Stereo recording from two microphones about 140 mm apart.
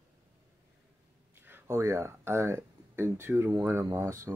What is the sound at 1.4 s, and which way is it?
Speech, 15° right (ahead or behind).